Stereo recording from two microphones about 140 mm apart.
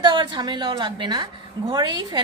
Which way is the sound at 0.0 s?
30° right (ahead or behind).